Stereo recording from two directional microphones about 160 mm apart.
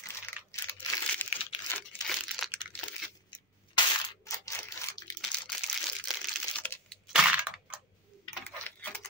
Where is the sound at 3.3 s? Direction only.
25° left (ahead or behind).